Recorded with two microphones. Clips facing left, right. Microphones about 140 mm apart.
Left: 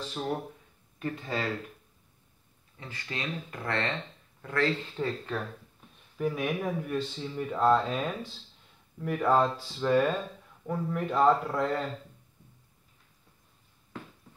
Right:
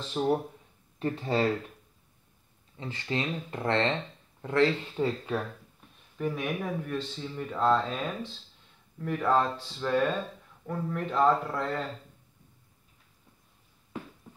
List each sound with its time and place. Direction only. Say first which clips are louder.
0.2 s speech: right 7 dB; 25° right (ahead or behind)
2.8 s speech: right 6 dB; 25° right (ahead or behind)
4.9 s speech: right 3 dB; 15° right (ahead or behind)
6.1 s speech: left 1 dB; centre (ahead or behind)